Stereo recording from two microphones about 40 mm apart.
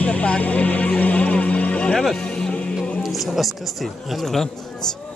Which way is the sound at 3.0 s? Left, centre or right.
Centre.